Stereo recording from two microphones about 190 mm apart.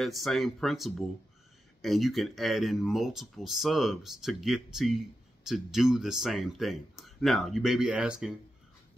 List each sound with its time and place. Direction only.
0.0 s speech: centre (ahead or behind)